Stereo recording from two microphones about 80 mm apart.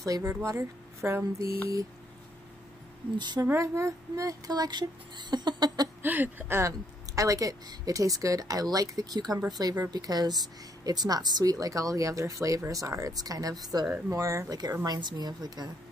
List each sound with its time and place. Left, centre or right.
0.0 s speech: right
3.5 s speech: right
6.0 s speech: right
7.2 s a woman's voice: right
13.8 s speech: right
14.1 s a woman's voice: right
14.9 s speech: right